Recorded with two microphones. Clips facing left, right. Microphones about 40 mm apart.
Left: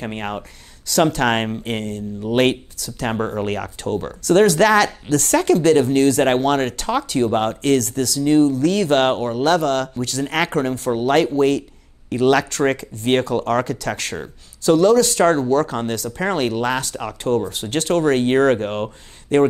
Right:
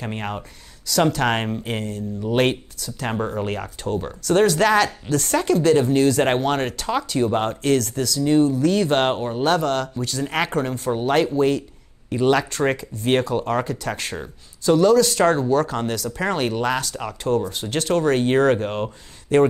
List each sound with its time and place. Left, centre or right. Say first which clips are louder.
0.2 s speech: left 2 dB; left
3.1 s speech: left 2 dB; centre
3.8 s speech: left 2 dB; left
12.9 s speech: left 2 dB; left